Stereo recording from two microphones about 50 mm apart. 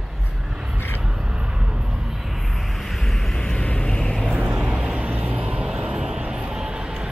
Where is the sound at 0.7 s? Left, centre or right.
Left.